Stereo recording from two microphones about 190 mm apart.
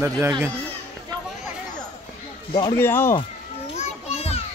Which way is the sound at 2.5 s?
20° left (ahead or behind).